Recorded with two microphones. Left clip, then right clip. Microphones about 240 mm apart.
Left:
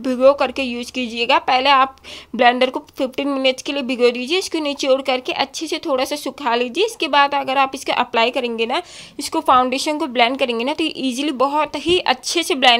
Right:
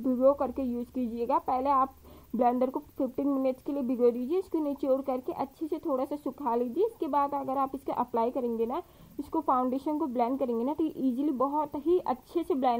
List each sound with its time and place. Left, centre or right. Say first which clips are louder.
0.0 s a woman's voice: left 11 dB; left